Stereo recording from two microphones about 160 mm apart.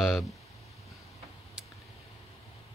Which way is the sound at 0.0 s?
Centre (ahead or behind).